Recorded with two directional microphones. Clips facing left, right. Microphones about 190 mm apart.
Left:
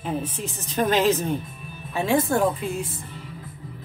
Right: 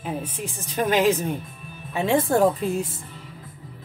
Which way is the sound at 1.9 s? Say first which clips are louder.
Even; 20° right (ahead or behind).